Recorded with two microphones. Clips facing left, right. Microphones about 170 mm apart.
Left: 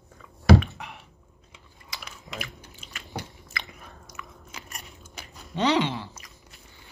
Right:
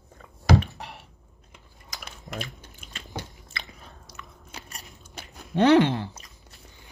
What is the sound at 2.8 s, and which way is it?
Biting, 55° right (ahead or behind).